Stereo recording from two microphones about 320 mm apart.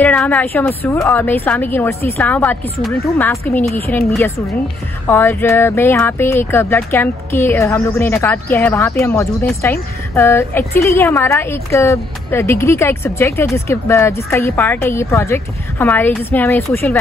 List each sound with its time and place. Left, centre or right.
0.0 s a woman's voice: centre